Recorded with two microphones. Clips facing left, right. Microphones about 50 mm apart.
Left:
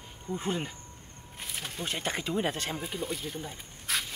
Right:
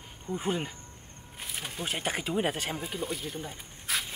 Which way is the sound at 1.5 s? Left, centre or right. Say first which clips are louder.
Right 1 dB; centre.